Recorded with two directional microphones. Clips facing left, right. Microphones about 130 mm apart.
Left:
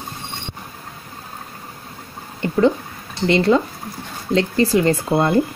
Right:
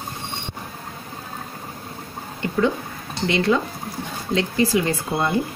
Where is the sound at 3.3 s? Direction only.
35° left (ahead or behind).